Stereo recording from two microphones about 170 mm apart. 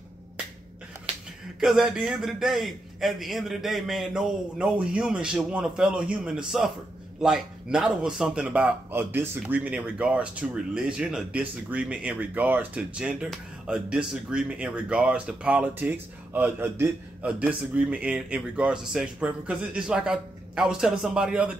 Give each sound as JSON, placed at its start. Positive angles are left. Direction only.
{"t": 1.6, "sound": "speech", "side_deg": -5}